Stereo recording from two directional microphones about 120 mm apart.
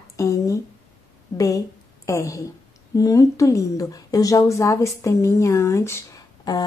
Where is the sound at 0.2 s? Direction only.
25° left (ahead or behind).